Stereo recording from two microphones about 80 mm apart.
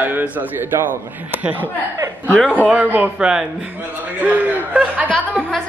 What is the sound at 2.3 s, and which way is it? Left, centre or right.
Speech, centre.